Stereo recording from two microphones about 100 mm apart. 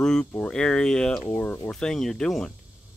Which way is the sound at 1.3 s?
20° left (ahead or behind).